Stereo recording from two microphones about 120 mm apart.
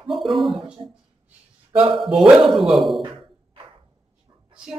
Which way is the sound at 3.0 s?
45° right (ahead or behind).